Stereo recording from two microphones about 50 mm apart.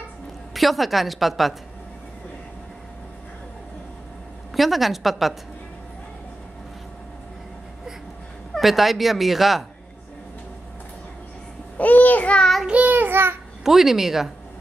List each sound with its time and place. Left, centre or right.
0.6 s speech: centre
4.6 s speech: centre
8.5 s speech: centre
11.8 s a child's voice: left
12.6 s child singing: right
13.7 s speech: centre